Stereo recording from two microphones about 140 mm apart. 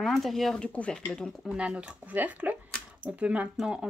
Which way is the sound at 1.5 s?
10° right (ahead or behind).